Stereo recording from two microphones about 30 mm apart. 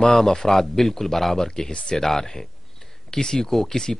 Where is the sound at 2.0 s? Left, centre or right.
Centre.